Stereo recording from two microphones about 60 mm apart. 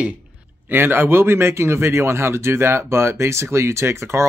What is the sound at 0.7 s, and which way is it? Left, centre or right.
Speech, right.